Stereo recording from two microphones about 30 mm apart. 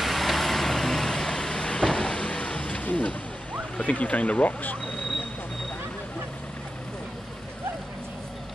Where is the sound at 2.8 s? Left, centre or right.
Left.